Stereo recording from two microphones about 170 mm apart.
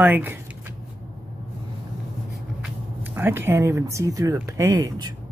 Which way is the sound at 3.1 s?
15° right (ahead or behind).